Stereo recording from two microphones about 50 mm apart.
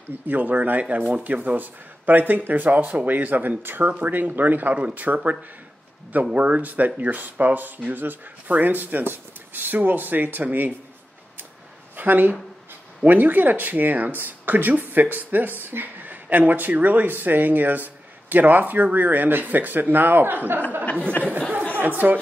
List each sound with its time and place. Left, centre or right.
0.3 s speech: right
6.3 s speech: right
12.0 s speech: right
21.7 s speech: right